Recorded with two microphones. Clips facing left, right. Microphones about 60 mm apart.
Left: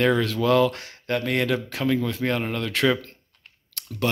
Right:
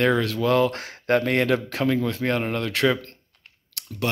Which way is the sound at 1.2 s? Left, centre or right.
Right.